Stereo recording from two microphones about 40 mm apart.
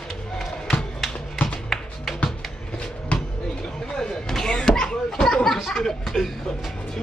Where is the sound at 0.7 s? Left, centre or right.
Centre.